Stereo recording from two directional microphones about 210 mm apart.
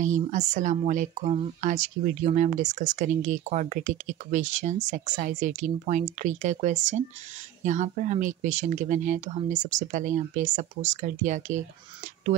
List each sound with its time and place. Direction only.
0.0 s speech: 35° right (ahead or behind)